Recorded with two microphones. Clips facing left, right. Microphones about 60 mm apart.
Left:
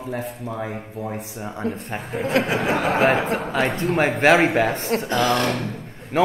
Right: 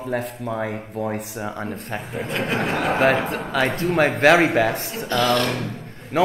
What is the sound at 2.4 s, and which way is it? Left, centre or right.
Speech, centre.